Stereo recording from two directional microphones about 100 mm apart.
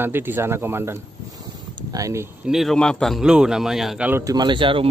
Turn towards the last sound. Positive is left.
turn(degrees=-60)  # may be behind; listen again after turning